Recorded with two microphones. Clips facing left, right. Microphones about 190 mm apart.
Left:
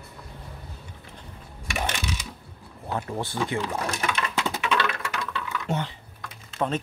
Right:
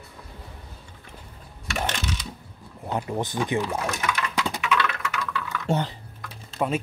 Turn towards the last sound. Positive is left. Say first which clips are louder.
# right 1 dB
turn(degrees=-5)  # may be behind; listen again after turning